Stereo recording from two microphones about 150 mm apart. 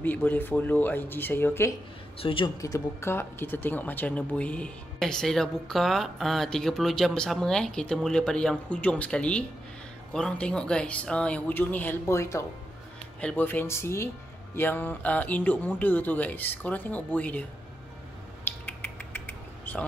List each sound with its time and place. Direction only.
0.0 s speech: 10° left (ahead or behind)
2.1 s speech: 35° left (ahead or behind)
2.6 s speech: 20° left (ahead or behind)
18.4 s a sound: 10° left (ahead or behind)